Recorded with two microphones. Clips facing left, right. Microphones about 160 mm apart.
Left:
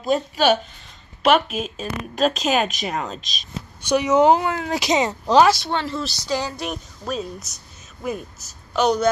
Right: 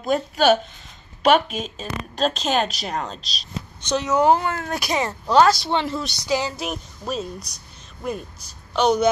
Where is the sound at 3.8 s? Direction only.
15° left (ahead or behind).